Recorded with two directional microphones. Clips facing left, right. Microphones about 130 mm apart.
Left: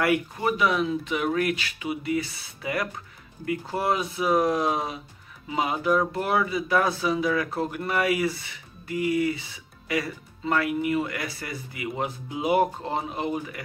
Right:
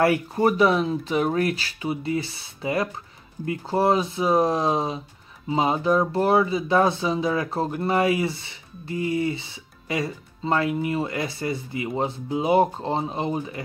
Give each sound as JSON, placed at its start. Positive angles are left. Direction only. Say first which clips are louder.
{"t": 0.0, "sound": "speech", "louder": "right 4 dB", "side_deg": -35}